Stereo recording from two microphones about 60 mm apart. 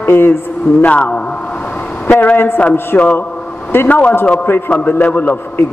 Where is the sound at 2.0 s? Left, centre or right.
Left.